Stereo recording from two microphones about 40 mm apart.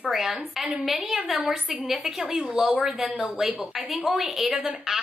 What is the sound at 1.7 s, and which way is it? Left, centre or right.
A woman's voice, centre.